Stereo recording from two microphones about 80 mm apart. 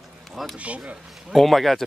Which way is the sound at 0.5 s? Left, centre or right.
Centre.